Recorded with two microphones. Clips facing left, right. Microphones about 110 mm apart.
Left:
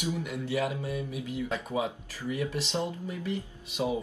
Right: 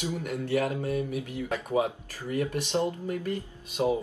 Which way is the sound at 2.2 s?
50° right (ahead or behind).